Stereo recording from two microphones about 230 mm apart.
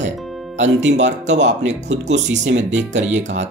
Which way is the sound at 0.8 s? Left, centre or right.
Right.